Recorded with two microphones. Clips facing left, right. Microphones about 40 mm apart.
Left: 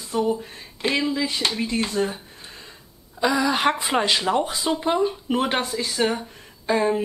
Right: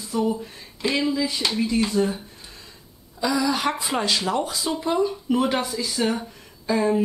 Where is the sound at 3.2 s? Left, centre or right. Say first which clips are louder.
Left 2 dB; left.